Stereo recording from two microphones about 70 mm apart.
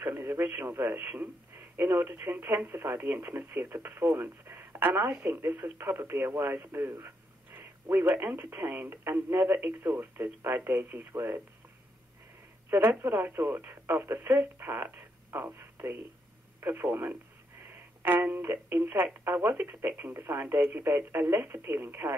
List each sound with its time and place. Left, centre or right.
0.0 s speech: right
12.6 s speech: right